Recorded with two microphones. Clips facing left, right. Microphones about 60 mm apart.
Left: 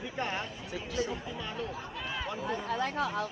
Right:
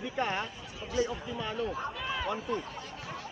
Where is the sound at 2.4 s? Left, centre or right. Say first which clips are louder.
Left 4 dB; left.